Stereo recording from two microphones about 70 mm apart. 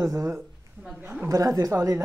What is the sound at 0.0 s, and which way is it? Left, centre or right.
A woman's voice, right.